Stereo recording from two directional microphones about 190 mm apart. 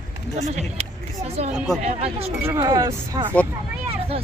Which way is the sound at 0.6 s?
35° right (ahead or behind).